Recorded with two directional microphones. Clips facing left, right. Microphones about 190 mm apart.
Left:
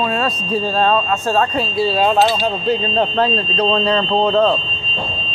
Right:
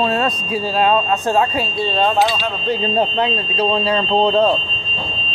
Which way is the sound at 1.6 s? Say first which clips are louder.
Left 2 dB; 5° left (ahead or behind).